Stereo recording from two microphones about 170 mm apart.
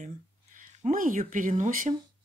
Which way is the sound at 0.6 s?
50° right (ahead or behind).